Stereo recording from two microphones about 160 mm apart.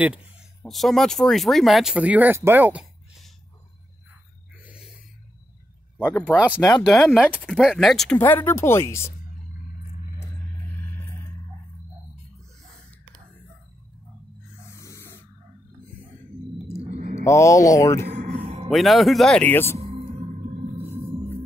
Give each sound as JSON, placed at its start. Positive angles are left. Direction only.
{"t": 0.7, "sound": "speech", "side_deg": 0}
{"t": 4.6, "sound": "a sound", "side_deg": -5}
{"t": 6.3, "sound": "speech", "side_deg": -10}
{"t": 8.2, "sound": "speech", "side_deg": 10}
{"t": 10.1, "sound": "a sound", "side_deg": 15}
{"t": 14.7, "sound": "spray", "side_deg": 20}
{"t": 17.2, "sound": "speech", "side_deg": 20}
{"t": 18.0, "sound": "a sound", "side_deg": -50}
{"t": 18.7, "sound": "speech", "side_deg": 0}